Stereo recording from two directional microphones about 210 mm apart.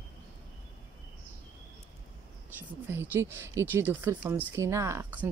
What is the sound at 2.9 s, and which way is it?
Speech, 10° right (ahead or behind).